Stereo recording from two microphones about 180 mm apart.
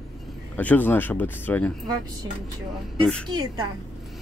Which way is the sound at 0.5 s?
10° left (ahead or behind).